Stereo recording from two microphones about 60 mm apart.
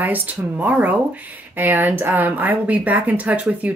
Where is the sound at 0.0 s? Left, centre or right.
Right.